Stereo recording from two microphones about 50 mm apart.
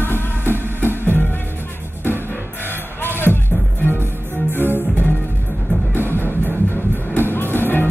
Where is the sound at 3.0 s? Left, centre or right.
Left.